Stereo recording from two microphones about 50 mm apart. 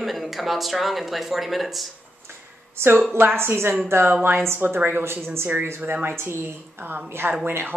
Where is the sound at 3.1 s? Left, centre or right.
Right.